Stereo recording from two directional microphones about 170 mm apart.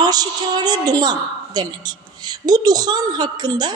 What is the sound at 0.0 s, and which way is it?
A woman's voice, 20° right (ahead or behind).